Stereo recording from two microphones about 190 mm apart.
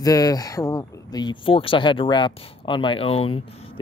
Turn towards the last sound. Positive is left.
turn(degrees=30)  # may be behind; listen again after turning